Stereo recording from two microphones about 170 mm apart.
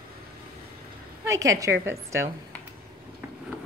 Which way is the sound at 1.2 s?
20° right (ahead or behind).